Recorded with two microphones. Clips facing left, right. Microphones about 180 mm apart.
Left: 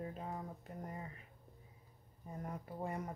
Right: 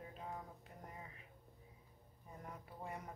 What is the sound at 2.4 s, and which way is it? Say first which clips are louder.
Speech: left 8 dB; 40° left (ahead or behind).